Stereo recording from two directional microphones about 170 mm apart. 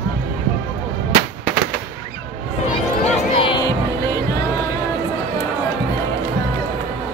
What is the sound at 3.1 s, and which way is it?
Music, 30° left (ahead or behind).